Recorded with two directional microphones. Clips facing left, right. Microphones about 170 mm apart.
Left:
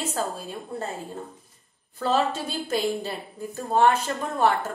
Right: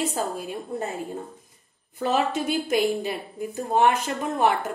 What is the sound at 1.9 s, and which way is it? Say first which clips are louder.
A woman's voice: even; 15° right (ahead or behind).